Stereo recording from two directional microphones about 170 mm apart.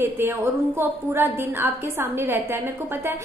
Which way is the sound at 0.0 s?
10° right (ahead or behind).